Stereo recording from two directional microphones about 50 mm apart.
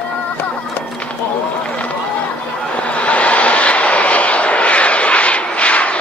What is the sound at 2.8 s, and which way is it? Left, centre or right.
Vehicle, left.